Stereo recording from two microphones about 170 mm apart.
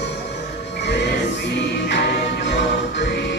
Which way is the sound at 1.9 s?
90° left.